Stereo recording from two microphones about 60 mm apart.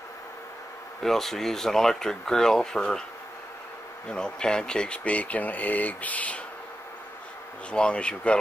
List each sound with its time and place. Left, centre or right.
1.0 s speech: centre
4.1 s speech: centre
7.7 s speech: centre